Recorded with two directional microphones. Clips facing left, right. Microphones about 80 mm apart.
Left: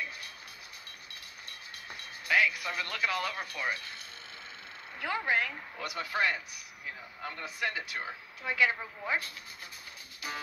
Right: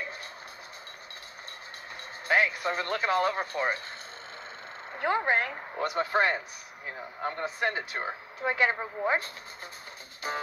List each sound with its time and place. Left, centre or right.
2.2 s speech: right
4.9 s speech: right